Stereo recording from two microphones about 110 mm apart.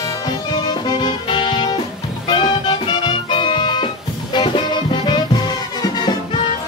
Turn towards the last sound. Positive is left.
turn(degrees=45)  # may be behind; listen again after turning